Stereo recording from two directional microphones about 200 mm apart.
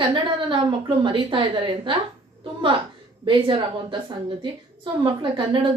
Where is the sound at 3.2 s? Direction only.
25° right (ahead or behind).